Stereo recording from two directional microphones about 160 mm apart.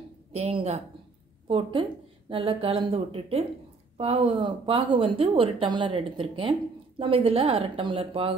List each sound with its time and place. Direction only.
0.3 s a woman's voice: 40° right (ahead or behind)